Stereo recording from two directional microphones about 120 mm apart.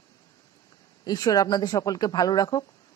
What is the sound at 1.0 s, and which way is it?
Speech, 35° left (ahead or behind).